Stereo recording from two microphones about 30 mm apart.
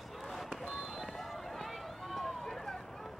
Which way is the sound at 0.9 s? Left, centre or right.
Centre.